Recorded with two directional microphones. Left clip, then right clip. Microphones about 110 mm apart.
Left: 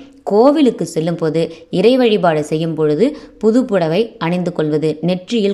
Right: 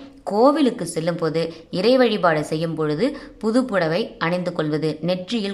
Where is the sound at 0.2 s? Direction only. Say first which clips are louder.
Left 6 dB; 30° left (ahead or behind).